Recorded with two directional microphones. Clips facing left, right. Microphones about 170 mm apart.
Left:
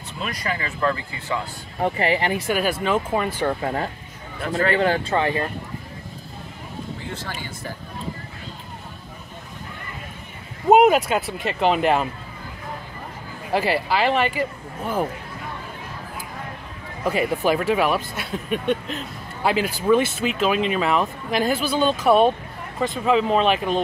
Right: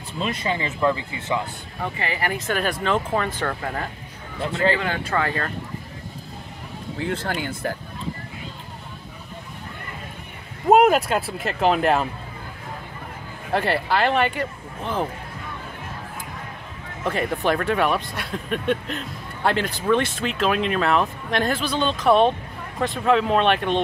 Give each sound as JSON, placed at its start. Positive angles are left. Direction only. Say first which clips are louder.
{"t": 0.2, "sound": "speech", "louder": "right 3 dB", "side_deg": -25}
{"t": 1.8, "sound": "speech", "louder": "left 6 dB", "side_deg": 30}
{"t": 2.3, "sound": "speech", "louder": "left 2 dB", "side_deg": 10}
{"t": 3.6, "sound": "speech", "louder": "left 4 dB", "side_deg": 30}
{"t": 4.4, "sound": "speech", "louder": "even", "side_deg": -30}
{"t": 4.7, "sound": "speech", "louder": "left 6 dB", "side_deg": 35}
{"t": 5.1, "sound": "speech", "louder": "left 3 dB", "side_deg": 20}
{"t": 7.1, "sound": "speech", "louder": "right 6 dB", "side_deg": -55}
{"t": 10.7, "sound": "speech", "louder": "left 1 dB", "side_deg": 0}
{"t": 13.5, "sound": "speech", "louder": "left 1 dB", "side_deg": 0}
{"t": 17.0, "sound": "speech", "louder": "left 2 dB", "side_deg": 10}